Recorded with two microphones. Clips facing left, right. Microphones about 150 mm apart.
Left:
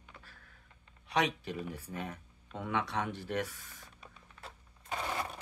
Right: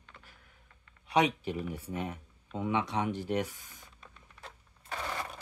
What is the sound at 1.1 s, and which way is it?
Speech, 20° right (ahead or behind).